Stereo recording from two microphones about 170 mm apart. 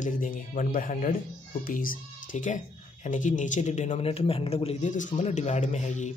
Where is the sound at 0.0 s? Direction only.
50° left (ahead or behind).